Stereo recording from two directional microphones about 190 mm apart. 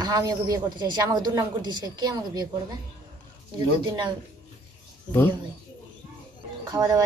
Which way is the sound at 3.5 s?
20° right (ahead or behind).